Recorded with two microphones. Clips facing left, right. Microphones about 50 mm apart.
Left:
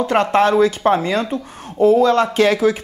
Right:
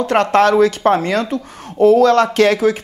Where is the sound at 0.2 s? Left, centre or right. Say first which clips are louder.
Right 3 dB; right.